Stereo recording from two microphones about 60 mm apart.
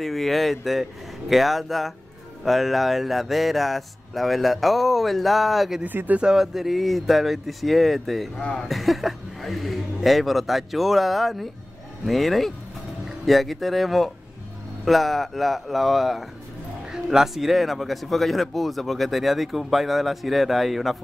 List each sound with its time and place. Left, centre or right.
0.0 s speech: centre
5.9 s speech: right
6.2 s speech: centre
8.4 s speech: left
8.6 s speech: centre